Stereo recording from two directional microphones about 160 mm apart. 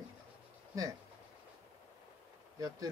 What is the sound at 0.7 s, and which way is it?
Speech, 20° right (ahead or behind).